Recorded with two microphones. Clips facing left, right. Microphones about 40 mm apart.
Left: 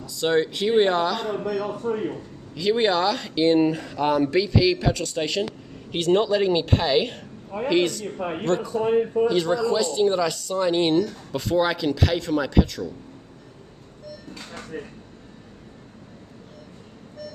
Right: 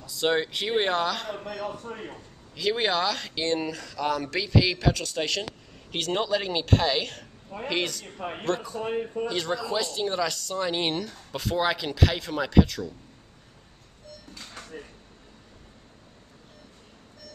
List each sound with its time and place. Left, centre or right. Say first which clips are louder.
0.0 s a man's voice: left 4 dB; centre
2.5 s speech: left 5 dB; centre
3.6 s speech: left 7 dB; left
4.3 s speech: left 5 dB; centre
7.7 s speech: left 8 dB; centre
14.3 s a sound: left 6 dB; left